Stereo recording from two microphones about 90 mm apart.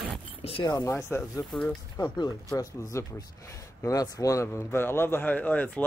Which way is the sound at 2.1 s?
45° left (ahead or behind).